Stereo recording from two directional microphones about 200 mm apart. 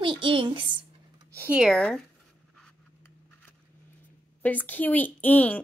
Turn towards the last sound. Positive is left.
turn(degrees=10)  # may be behind; listen again after turning